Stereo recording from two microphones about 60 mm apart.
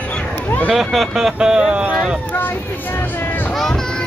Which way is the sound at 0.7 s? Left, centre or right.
Centre.